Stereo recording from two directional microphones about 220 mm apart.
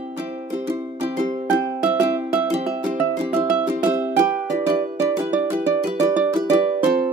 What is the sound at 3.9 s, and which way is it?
Music, 10° right (ahead or behind).